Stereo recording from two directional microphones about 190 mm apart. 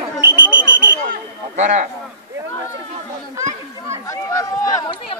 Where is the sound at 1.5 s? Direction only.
40° right (ahead or behind).